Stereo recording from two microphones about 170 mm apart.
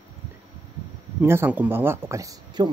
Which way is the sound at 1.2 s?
15° right (ahead or behind).